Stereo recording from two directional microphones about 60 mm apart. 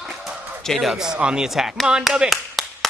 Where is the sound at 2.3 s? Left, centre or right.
Centre.